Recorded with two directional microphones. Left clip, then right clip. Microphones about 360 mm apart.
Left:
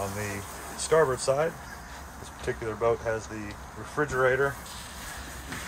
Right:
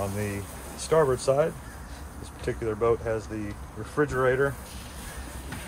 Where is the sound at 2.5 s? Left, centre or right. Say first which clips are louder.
Right 2 dB; centre.